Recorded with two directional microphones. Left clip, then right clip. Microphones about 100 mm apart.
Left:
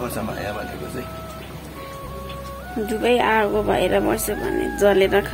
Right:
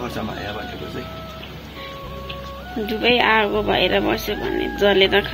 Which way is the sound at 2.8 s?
15° left (ahead or behind).